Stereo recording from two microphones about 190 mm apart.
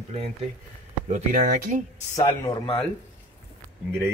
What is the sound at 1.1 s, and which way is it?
Speech, 45° right (ahead or behind).